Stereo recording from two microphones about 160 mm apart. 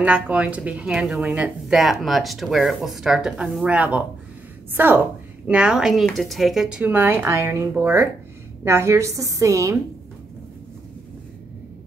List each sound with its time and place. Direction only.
0.0 s a woman's voice: 10° right (ahead or behind)